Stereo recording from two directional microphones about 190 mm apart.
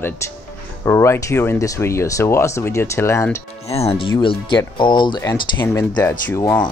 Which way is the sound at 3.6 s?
30° left (ahead or behind).